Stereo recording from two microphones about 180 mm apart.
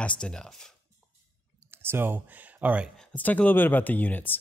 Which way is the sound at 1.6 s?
15° right (ahead or behind).